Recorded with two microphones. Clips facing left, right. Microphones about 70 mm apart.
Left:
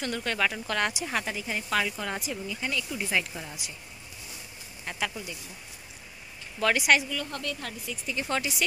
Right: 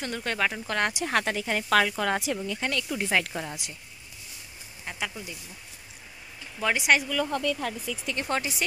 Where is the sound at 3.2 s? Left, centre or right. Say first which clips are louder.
Right 5 dB; right.